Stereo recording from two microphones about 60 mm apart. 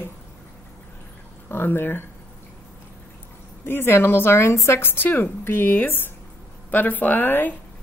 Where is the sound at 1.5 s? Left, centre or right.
Left.